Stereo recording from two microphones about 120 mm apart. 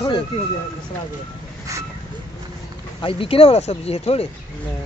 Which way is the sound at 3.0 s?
50° left (ahead or behind).